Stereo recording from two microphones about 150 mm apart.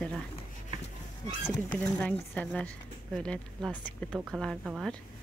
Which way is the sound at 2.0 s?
10° left (ahead or behind).